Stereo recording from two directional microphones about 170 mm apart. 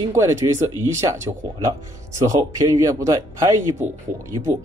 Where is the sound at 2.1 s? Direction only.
20° right (ahead or behind).